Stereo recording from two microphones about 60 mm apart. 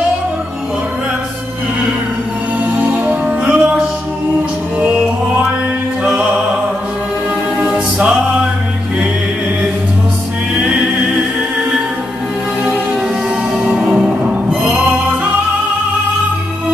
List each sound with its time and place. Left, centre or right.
2.8 s music: right
6.0 s music: centre
7.6 s music: centre
13.7 s music: centre